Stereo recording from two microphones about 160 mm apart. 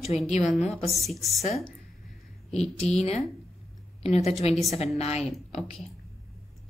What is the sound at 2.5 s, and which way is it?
A woman's voice, 40° left (ahead or behind).